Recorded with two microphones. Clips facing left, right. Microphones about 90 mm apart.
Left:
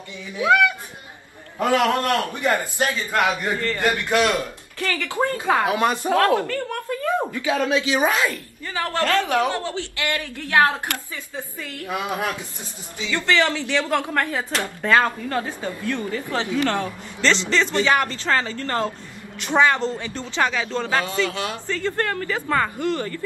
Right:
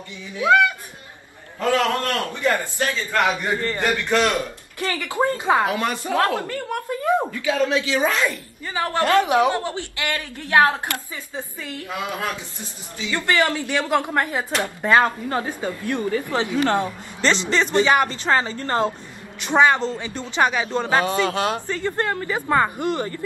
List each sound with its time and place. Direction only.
1.6 s a man's voice: 20° left (ahead or behind)
3.5 s speech: 20° right (ahead or behind)
3.8 s a man's voice: 15° left (ahead or behind)
4.3 s speech: 20° right (ahead or behind)
5.7 s a man's voice: 20° left (ahead or behind)
6.1 s speech: 20° right (ahead or behind)
7.2 s a man's voice: 25° left (ahead or behind)
8.6 s speech: 20° right (ahead or behind)
11.9 s a man's voice: 20° left (ahead or behind)
13.1 s a woman's voice: 15° right (ahead or behind)